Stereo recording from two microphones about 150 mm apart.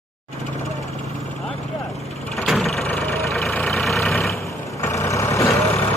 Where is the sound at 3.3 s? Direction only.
10° left (ahead or behind).